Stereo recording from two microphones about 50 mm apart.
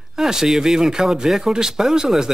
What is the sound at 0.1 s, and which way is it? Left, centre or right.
Speech, centre.